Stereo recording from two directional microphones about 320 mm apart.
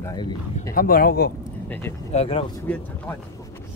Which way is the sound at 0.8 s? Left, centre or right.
Left.